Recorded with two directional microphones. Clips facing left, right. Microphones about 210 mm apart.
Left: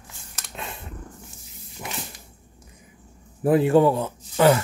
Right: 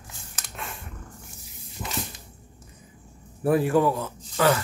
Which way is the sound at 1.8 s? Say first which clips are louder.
Even; 10° left (ahead or behind).